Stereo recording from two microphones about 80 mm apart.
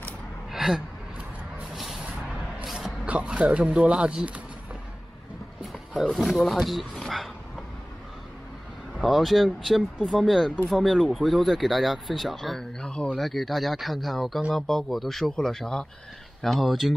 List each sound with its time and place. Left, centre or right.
0.5 s gasp: centre
2.6 s music: centre
3.1 s speech: centre
5.6 s speech: centre
9.0 s speech: centre